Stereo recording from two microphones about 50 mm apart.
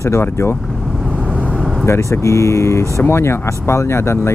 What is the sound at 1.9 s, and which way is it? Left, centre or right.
Speech, left.